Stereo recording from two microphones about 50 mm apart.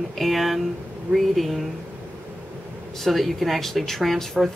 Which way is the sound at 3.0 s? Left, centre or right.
Centre.